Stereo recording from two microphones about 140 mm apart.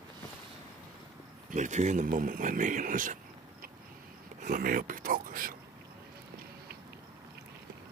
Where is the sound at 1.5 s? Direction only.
60° right (ahead or behind).